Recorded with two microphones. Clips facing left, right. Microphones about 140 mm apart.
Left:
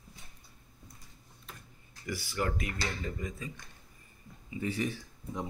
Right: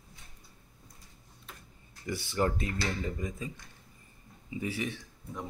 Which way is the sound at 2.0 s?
25° right (ahead or behind).